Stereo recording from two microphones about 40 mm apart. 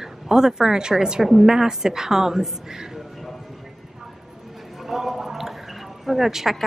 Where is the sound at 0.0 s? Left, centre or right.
Centre.